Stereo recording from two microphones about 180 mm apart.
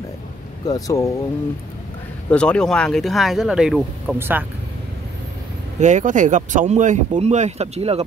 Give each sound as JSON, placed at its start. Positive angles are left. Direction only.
{"t": 0.7, "sound": "speech", "side_deg": 20}
{"t": 2.2, "sound": "speech", "side_deg": 5}
{"t": 5.8, "sound": "speech", "side_deg": -40}